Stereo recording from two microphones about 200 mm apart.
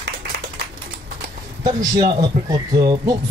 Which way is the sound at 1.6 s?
20° right (ahead or behind).